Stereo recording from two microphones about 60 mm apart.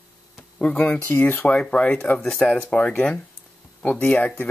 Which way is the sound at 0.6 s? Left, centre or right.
Left.